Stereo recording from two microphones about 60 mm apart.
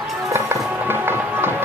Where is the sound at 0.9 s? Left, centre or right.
Right.